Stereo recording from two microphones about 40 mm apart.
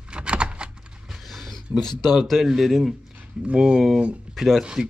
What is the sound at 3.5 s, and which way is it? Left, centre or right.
Speech, right.